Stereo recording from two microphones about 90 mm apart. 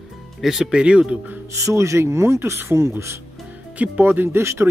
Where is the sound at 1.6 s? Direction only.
35° right (ahead or behind).